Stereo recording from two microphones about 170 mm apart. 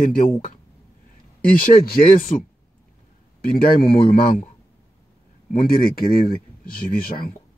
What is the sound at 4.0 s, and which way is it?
Speech, 30° left (ahead or behind).